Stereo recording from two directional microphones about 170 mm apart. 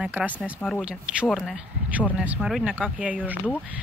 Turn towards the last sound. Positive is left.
turn(degrees=-10)  # may be behind; listen again after turning